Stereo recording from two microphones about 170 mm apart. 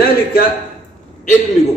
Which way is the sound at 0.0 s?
60° left (ahead or behind).